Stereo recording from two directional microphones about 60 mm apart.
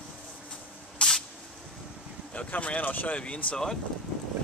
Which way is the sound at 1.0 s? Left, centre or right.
Centre.